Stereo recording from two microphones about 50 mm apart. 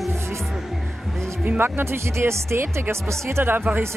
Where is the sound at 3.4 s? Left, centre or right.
Right.